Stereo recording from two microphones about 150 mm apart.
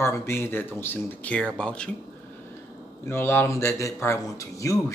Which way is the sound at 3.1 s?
15° left (ahead or behind).